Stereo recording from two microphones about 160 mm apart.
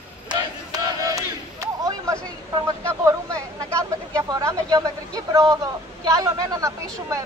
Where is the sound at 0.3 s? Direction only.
25° right (ahead or behind).